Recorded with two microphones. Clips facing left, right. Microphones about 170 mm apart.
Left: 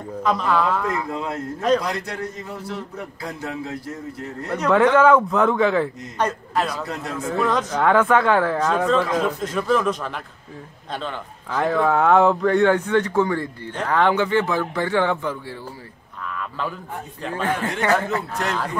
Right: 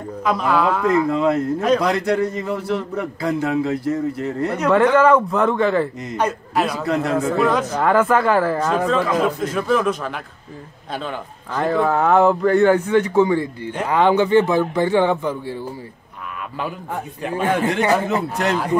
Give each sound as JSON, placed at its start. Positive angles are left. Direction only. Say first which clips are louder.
{"t": 0.2, "sound": "speech", "louder": "right 2 dB", "side_deg": -5}
{"t": 1.1, "sound": "a man's voice", "louder": "right 9 dB", "side_deg": -70}
{"t": 4.5, "sound": "speech", "louder": "right 1 dB", "side_deg": -5}
{"t": 6.9, "sound": "a man's voice", "louder": "right 10 dB", "side_deg": -65}
{"t": 7.3, "sound": "speech", "louder": "right 3 dB", "side_deg": -5}
{"t": 17.2, "sound": "speech", "louder": "right 4 dB", "side_deg": -15}